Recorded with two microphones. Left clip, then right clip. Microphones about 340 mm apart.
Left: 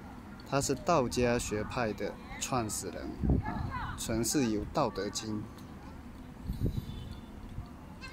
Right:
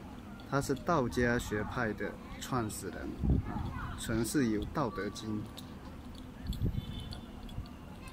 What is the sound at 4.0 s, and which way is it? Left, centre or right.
Speech, centre.